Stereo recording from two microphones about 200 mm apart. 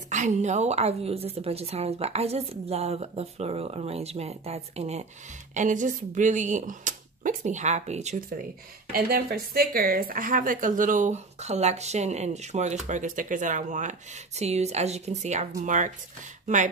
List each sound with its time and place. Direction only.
0.1 s a woman's voice: 35° right (ahead or behind)
8.9 s a woman's voice: 50° right (ahead or behind)